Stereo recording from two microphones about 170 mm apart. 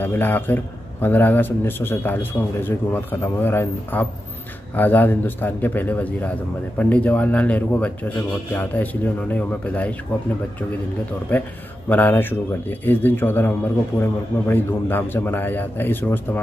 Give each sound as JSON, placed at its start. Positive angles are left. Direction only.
{"t": 0.0, "sound": "speech", "side_deg": 10}
{"t": 11.3, "sound": "speech", "side_deg": 10}